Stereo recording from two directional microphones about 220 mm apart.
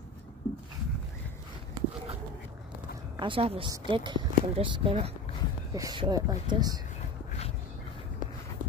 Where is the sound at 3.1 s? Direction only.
25° right (ahead or behind).